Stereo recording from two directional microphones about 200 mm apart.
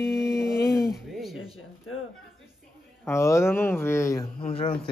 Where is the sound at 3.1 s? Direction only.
15° left (ahead or behind).